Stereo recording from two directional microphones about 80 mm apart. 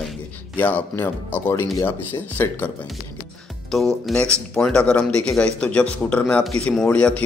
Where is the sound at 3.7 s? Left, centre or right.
Centre.